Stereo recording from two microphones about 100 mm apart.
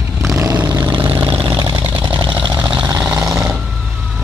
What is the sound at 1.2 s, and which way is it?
Vehicle, 20° right (ahead or behind).